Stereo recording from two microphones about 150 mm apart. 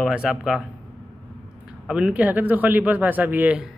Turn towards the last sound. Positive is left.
turn(degrees=-10)  # may be behind; listen again after turning